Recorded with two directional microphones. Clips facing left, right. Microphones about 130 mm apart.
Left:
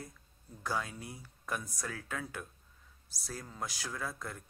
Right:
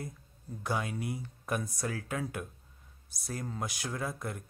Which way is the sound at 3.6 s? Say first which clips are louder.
Right 1 dB; 20° right (ahead or behind).